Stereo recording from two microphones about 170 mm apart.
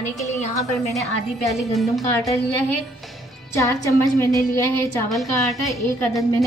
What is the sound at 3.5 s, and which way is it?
Speech, 20° left (ahead or behind).